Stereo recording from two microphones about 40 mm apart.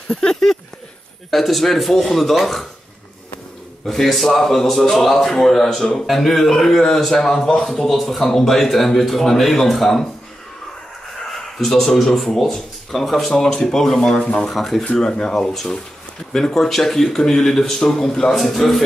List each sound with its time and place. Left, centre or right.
0.1 s a man's voice: centre
3.8 s speech: centre
11.2 s speech: centre
14.1 s speech: centre
14.5 s a man's voice: centre
14.9 s a man's voice: centre